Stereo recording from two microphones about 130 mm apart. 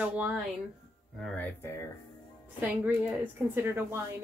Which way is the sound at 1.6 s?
20° left (ahead or behind).